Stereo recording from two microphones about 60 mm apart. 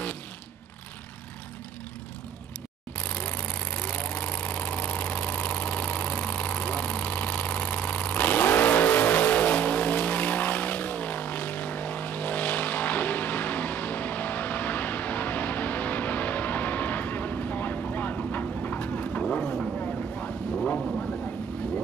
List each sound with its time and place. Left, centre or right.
3.0 s engine: left
19.8 s vehicle: left